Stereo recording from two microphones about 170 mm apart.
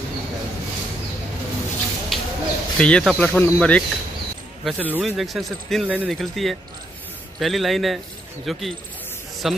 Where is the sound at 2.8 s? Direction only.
5° left (ahead or behind).